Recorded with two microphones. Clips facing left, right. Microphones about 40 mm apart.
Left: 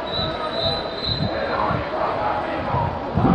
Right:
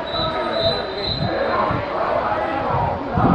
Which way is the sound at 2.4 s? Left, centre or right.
Right.